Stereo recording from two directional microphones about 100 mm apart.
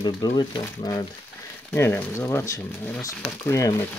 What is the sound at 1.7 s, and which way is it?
Speech, 20° left (ahead or behind).